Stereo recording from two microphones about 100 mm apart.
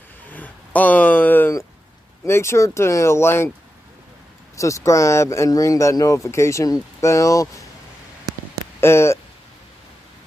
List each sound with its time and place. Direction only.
0.3 s a sound: 15° left (ahead or behind)
2.2 s speech: 25° left (ahead or behind)
4.6 s speech: 30° left (ahead or behind)
8.8 s speech: 25° left (ahead or behind)